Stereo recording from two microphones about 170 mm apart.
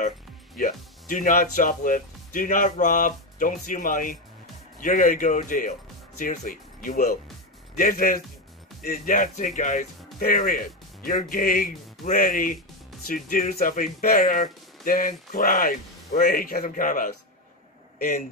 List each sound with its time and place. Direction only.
0.6 s speech: 50° left (ahead or behind)